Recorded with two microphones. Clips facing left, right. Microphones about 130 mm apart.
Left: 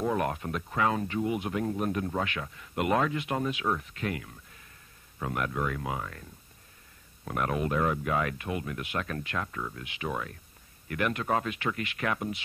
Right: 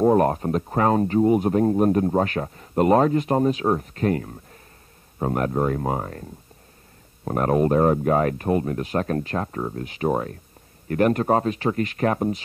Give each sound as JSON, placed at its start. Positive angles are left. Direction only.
{"t": 0.0, "sound": "speech", "side_deg": -40}
{"t": 7.2, "sound": "speech", "side_deg": -40}